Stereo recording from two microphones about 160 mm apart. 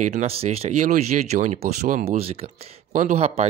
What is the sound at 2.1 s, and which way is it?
Speech, 40° right (ahead or behind).